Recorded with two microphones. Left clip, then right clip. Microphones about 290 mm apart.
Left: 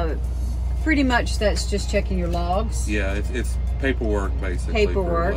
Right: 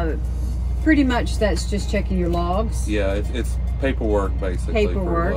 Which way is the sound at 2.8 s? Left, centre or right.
Centre.